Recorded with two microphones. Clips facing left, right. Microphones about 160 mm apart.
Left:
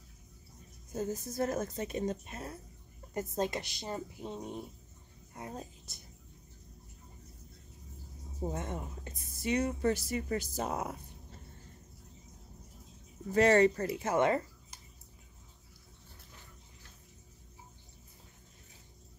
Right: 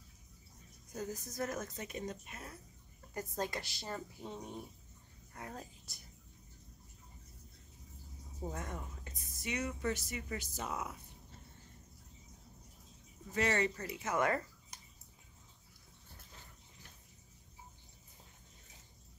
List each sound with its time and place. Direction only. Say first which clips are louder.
0.9 s a woman's voice: left 6 dB; 25° left (ahead or behind)
8.4 s speech: left 5 dB; 25° left (ahead or behind); by 11.0 s 40° left (ahead or behind)
13.3 s speech: left 9 dB; 40° left (ahead or behind)
14.0 s a woman's voice: left 5 dB; 25° left (ahead or behind)